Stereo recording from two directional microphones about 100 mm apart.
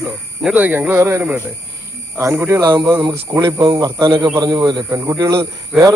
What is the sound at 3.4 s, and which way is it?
Speech, 50° right (ahead or behind).